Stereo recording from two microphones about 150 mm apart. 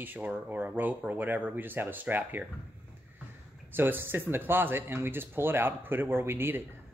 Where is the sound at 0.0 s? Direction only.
10° right (ahead or behind).